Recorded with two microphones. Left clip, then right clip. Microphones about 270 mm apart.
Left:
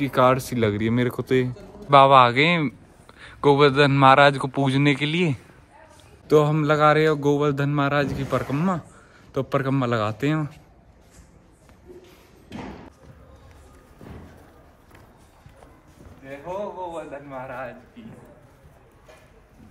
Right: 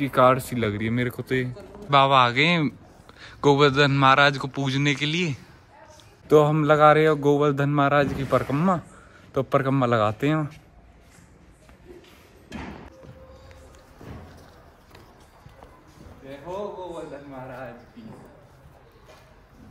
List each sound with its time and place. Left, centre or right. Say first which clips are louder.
0.0 s speech: even; centre; by 1.5 s left
1.9 s a man's voice: left 4 dB; centre
6.2 s speech: right 1 dB; centre
16.9 s a sound: left 3 dB; centre